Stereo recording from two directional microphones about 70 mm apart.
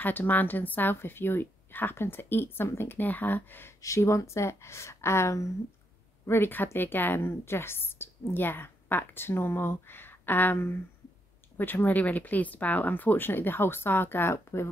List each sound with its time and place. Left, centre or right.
0.0 s a woman's voice: left
3.8 s speech: left
6.2 s a woman's voice: left